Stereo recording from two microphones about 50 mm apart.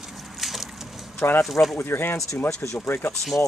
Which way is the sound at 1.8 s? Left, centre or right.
Left.